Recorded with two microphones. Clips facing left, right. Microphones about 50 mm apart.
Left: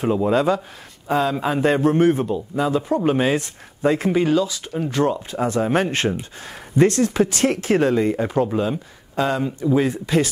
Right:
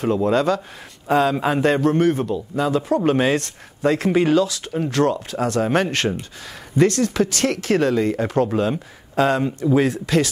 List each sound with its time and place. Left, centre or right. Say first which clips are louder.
0.0 s speech: even; centre
1.0 s speech: right 2 dB; centre
1.9 s speech: left 1 dB; centre
2.5 s speech: right 1 dB; centre
4.1 s speech: right 2 dB; centre